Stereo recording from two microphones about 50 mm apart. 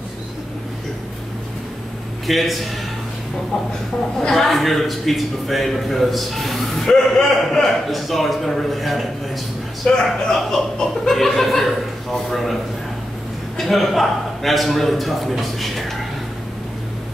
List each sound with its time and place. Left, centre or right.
2.2 s a man's voice: centre
4.3 s a man's voice: centre
9.8 s speech: left
10.2 s a man's voice: centre
13.6 s a man's voice: centre